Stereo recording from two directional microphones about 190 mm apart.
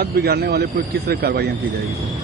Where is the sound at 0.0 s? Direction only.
55° right (ahead or behind).